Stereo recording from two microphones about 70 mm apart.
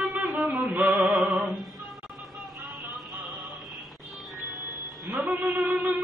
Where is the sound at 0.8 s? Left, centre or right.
Right.